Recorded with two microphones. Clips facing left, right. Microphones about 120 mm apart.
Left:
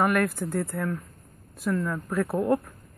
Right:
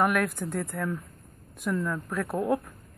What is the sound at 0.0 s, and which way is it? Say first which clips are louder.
Speech: left 2 dB; centre (ahead or behind).